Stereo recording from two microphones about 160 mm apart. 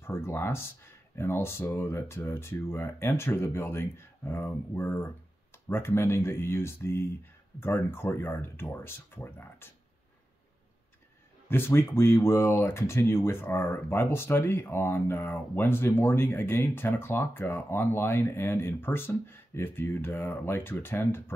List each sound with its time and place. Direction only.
0.0 s speech: 15° left (ahead or behind)
11.4 s speech: 15° left (ahead or behind)